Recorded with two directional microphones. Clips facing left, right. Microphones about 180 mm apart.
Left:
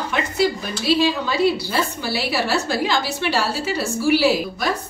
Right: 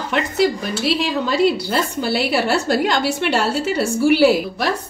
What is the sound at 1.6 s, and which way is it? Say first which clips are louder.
A woman's voice: right 3 dB; 60° right (ahead or behind).